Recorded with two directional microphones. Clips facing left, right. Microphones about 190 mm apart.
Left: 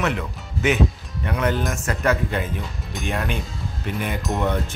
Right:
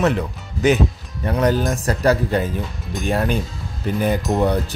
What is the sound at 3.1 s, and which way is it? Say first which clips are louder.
Speech: right 6 dB; 35° right (ahead or behind).